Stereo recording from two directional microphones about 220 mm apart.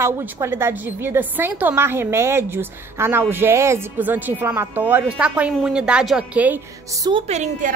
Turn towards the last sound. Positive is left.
turn(degrees=-30)  # may be behind; listen again after turning